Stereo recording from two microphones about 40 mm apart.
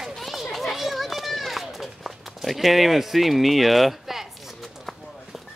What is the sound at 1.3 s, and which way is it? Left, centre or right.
Run, centre.